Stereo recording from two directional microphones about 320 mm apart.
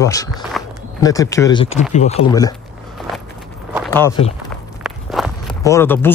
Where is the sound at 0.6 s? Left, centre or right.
Centre.